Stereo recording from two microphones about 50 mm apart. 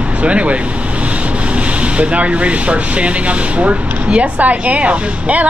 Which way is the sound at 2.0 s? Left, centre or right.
Right.